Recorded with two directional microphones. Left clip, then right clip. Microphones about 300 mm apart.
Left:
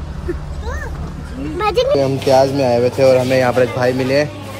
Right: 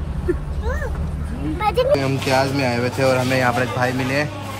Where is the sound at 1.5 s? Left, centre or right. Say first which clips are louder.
Left 3 dB; left.